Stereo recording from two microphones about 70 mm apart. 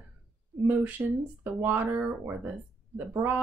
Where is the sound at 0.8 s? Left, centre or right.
Right.